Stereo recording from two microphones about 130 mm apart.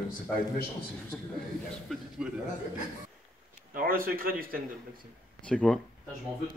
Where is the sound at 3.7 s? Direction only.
90° right.